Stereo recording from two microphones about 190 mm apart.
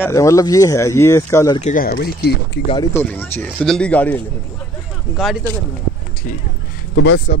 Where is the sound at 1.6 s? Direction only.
45° left (ahead or behind).